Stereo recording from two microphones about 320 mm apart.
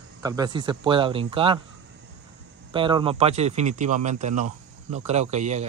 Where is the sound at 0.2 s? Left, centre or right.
Centre.